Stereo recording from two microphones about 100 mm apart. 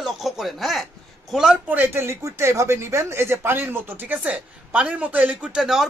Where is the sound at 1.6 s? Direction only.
15° right (ahead or behind).